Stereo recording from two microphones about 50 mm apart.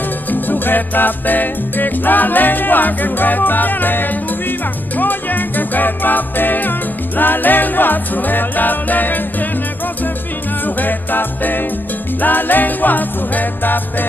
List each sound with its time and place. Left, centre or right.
0.3 s music: left
10.6 s music: left